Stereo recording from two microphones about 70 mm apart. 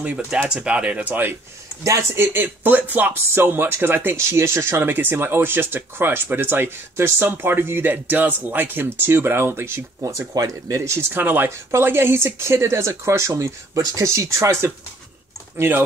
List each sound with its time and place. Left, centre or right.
0.0 s speech: centre
1.0 s speech: right
10.0 s speech: right
15.5 s speech: right